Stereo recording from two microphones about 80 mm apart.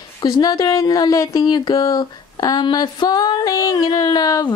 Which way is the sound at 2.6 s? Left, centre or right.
Left.